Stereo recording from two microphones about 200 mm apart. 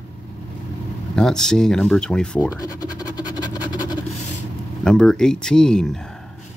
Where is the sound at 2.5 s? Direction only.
20° left (ahead or behind).